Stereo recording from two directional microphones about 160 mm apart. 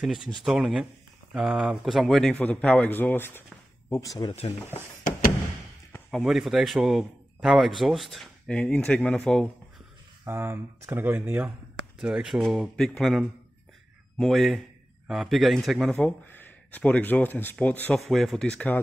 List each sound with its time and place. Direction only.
0.0 s a man's voice: centre (ahead or behind); by 4.3 s 20° left (ahead or behind)
4.3 s speech: 40° left (ahead or behind)
6.0 s a man's voice: 5° right (ahead or behind)
10.2 s a man's voice: 15° right (ahead or behind); by 18.8 s 5° left (ahead or behind)